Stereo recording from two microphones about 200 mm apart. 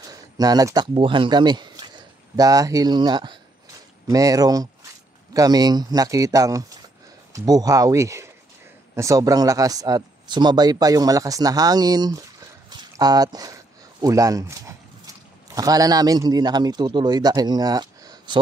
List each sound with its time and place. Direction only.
0.0 s speech: 20° right (ahead or behind)